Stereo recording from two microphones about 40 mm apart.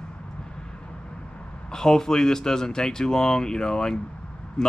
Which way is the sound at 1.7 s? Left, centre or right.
Centre.